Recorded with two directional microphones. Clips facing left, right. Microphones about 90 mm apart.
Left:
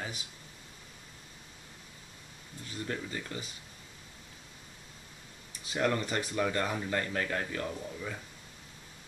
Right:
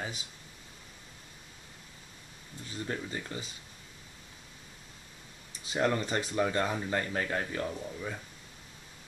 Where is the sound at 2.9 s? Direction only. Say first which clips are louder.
Right 1 dB; 20° right (ahead or behind).